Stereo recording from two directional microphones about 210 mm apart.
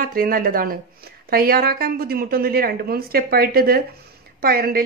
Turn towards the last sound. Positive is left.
turn(degrees=-45)  # may be behind; listen again after turning